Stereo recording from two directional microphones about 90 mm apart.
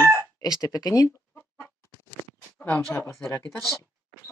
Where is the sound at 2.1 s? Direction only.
20° left (ahead or behind).